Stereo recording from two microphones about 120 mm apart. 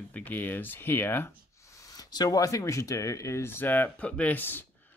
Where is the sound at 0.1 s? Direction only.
15° left (ahead or behind).